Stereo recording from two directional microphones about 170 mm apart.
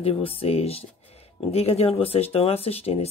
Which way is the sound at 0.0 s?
35° left (ahead or behind).